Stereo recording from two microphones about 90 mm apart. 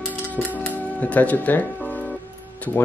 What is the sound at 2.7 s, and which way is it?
Speech, 20° left (ahead or behind).